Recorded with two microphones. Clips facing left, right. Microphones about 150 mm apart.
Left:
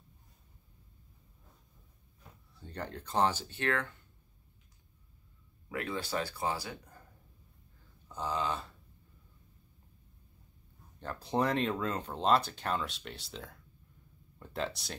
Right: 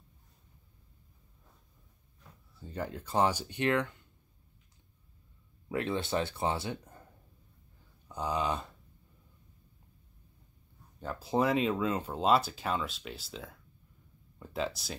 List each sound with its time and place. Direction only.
2.6 s speech: 5° right (ahead or behind)
5.7 s speech: 25° right (ahead or behind)
8.1 s speech: 15° right (ahead or behind)
11.0 s speech: 5° right (ahead or behind)